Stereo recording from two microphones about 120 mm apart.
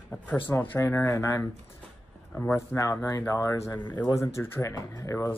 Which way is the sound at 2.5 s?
25° left (ahead or behind).